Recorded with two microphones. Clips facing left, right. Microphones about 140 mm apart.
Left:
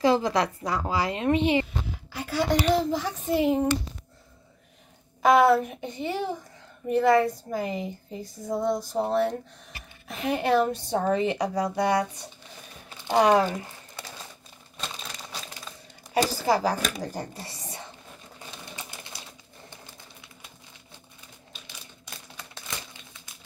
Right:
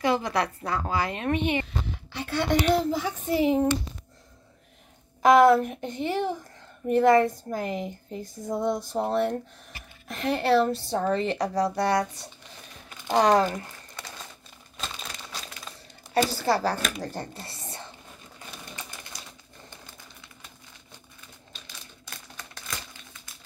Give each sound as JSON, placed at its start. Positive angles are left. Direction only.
{"t": 0.0, "sound": "a woman's voice", "side_deg": 25}
{"t": 2.1, "sound": "a woman's voice", "side_deg": 5}
{"t": 5.2, "sound": "a woman's voice", "side_deg": 0}
{"t": 14.8, "sound": "crumpling", "side_deg": 0}
{"t": 16.1, "sound": "speech", "side_deg": 15}
{"t": 21.6, "sound": "typewriter", "side_deg": 25}